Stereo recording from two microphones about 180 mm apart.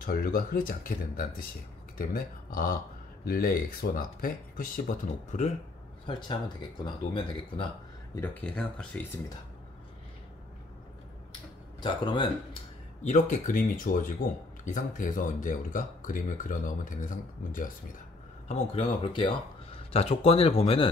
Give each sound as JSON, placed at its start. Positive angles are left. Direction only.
{"t": 0.0, "sound": "speech", "side_deg": 55}
{"t": 6.0, "sound": "speech", "side_deg": 25}
{"t": 8.2, "sound": "speech", "side_deg": 5}
{"t": 11.8, "sound": "speech", "side_deg": 25}
{"t": 13.0, "sound": "speech", "side_deg": 45}
{"t": 18.5, "sound": "speech", "side_deg": 35}